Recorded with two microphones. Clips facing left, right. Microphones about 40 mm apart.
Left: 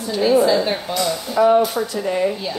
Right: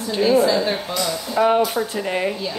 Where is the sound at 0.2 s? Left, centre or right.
Centre.